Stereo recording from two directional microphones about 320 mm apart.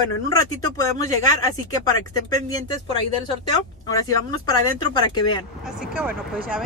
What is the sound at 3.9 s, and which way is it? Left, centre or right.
Speech, centre.